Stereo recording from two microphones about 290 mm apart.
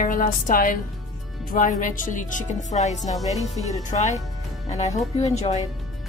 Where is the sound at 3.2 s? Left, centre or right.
Centre.